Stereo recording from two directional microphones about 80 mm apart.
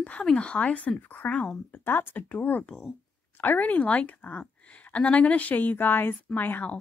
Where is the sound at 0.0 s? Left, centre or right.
Centre.